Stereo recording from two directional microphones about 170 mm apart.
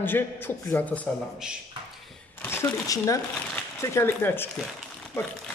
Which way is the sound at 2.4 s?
15° left (ahead or behind).